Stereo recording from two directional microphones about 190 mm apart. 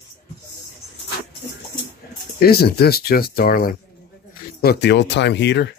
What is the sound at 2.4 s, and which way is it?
Speech, 55° left (ahead or behind).